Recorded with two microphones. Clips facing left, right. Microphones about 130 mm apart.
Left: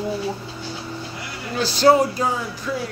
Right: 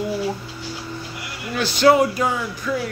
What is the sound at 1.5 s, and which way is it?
Speech, 35° left (ahead or behind).